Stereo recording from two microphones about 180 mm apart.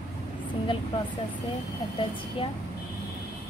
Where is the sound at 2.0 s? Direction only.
30° left (ahead or behind).